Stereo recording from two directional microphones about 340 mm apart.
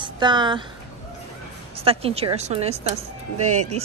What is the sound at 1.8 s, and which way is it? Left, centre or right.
Speech, centre.